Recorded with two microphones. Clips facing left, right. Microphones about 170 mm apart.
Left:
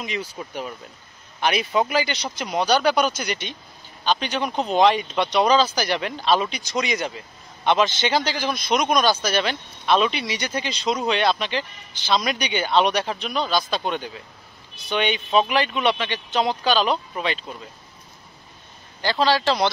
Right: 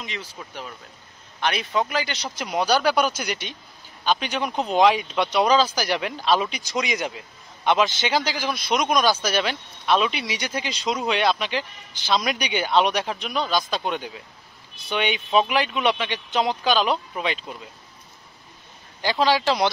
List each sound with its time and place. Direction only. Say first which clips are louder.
0.4 s speech: left 5 dB; 20° left (ahead or behind); by 17.6 s 5° right (ahead or behind)
19.0 s speech: even; 15° right (ahead or behind)